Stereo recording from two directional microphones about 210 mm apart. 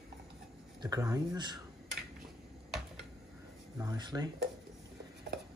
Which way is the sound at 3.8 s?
20° right (ahead or behind).